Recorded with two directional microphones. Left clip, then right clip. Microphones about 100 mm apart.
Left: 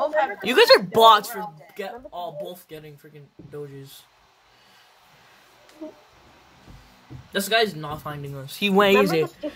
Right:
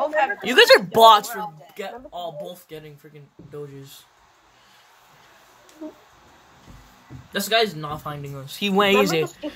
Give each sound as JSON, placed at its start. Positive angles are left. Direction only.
{"t": 0.0, "sound": "a sound", "side_deg": -10}
{"t": 0.6, "sound": "speech", "side_deg": 0}
{"t": 7.3, "sound": "speech", "side_deg": 15}
{"t": 9.0, "sound": "speech", "side_deg": 0}